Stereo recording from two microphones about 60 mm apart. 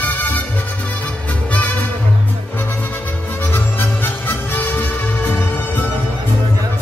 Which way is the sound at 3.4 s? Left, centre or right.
Left.